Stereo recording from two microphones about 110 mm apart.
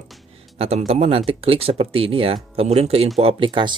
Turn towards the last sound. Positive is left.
turn(degrees=-45)  # may be behind; listen again after turning